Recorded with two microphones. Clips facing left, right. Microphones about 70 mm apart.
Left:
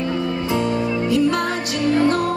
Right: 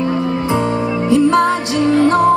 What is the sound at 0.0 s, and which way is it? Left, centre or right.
Music, right.